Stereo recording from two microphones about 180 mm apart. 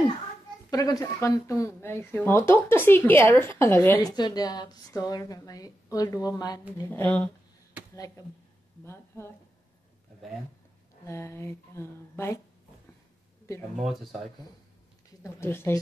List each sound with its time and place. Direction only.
0.7 s speech: 20° left (ahead or behind)
4.0 s a woman's voice: 20° left (ahead or behind)
6.9 s speech: 10° left (ahead or behind)
8.8 s speech: 15° left (ahead or behind)
11.1 s speech: 15° left (ahead or behind)
13.7 s speech: centre (ahead or behind)
15.2 s speech: 15° left (ahead or behind)